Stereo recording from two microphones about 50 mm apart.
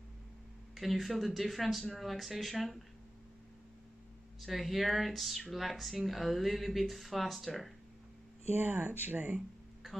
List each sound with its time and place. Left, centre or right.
0.7 s speech: centre
4.4 s speech: centre
8.5 s speech: right